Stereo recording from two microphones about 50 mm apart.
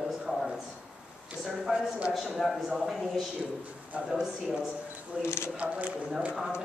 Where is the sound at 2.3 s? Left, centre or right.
Centre.